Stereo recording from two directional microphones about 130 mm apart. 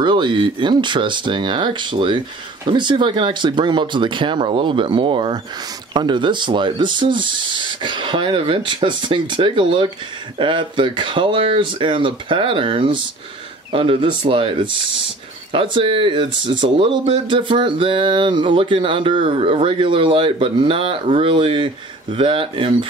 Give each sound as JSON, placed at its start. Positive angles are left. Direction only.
{"t": 0.0, "sound": "speech", "side_deg": -35}